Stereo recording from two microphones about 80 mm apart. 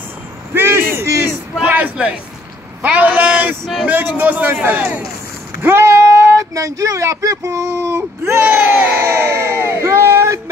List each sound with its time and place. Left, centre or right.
0.6 s vehicle: right
1.7 s a man's voice: centre
5.6 s speech: right
8.5 s a sound: right